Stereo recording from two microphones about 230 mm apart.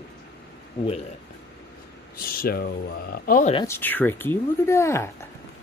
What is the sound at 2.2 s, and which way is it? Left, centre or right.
Speech, left.